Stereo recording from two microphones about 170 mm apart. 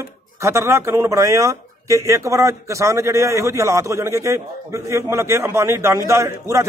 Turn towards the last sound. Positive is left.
turn(degrees=-15)  # may be behind; listen again after turning